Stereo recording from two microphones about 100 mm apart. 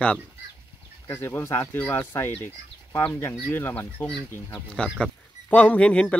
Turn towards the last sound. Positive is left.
turn(degrees=10)  # may be behind; listen again after turning